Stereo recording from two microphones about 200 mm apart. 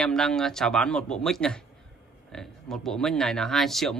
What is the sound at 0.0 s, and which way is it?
Speech, 5° left (ahead or behind).